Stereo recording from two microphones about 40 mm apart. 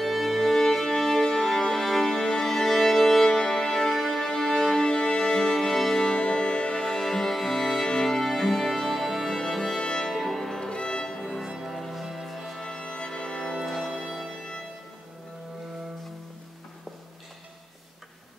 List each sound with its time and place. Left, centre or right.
0.0 s music: centre
4.7 s music: centre
5.5 s music: centre
6.1 s music: left
10.0 s music: centre
10.7 s music: left
11.3 s music: centre
12.6 s music: centre
13.6 s music: centre